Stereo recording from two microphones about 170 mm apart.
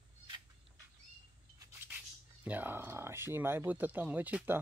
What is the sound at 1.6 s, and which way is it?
Speech, 10° right (ahead or behind).